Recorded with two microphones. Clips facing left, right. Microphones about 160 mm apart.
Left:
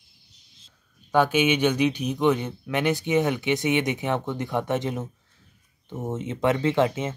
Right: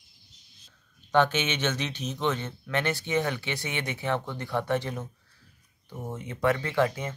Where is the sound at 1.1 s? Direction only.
10° left (ahead or behind).